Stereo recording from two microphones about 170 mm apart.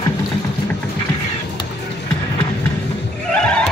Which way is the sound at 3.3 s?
5° left (ahead or behind).